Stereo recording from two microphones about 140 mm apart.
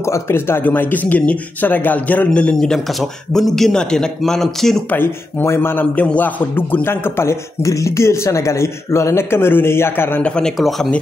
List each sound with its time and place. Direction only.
0.0 s a man's voice: 20° left (ahead or behind); by 4.8 s centre (ahead or behind)
4.9 s a man's voice: 15° left (ahead or behind)